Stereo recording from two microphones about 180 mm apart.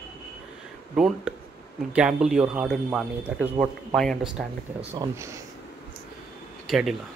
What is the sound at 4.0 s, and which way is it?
Speech, centre (ahead or behind).